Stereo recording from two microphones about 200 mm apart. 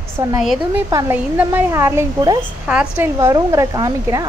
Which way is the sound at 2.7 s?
5° right (ahead or behind).